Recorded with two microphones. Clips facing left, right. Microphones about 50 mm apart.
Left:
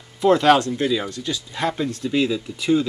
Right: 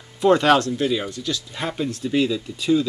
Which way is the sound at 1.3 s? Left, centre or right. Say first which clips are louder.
Left 5 dB; left.